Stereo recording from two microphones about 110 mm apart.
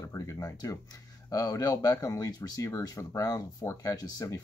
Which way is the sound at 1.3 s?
35° left (ahead or behind).